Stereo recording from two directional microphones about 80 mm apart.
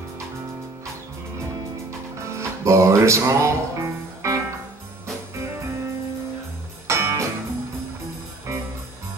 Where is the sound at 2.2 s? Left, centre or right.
Right.